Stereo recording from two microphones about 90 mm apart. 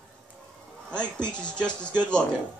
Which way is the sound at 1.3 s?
10° left (ahead or behind).